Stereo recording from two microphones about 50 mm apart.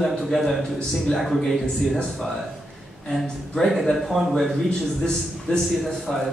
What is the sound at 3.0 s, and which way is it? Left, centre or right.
A man's voice, centre.